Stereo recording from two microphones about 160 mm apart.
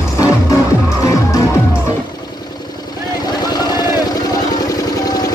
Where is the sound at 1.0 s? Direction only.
20° left (ahead or behind).